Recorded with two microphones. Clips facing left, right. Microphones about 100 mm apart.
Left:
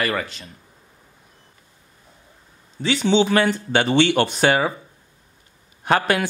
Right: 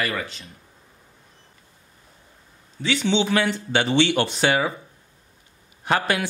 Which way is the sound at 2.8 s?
35° left (ahead or behind).